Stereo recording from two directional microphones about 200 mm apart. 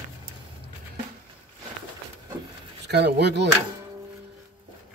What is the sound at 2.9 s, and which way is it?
Speech, 55° right (ahead or behind).